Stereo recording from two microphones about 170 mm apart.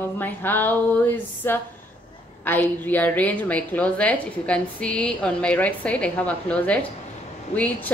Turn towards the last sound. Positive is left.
turn(degrees=10)  # may be behind; listen again after turning